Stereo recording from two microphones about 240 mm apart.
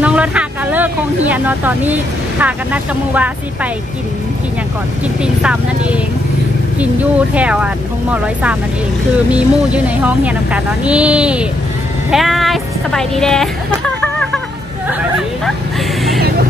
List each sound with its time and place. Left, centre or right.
0.0 s speech: centre
5.2 s a woman's voice: centre